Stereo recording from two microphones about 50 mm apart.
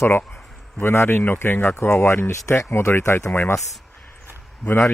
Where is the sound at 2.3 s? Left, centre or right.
Left.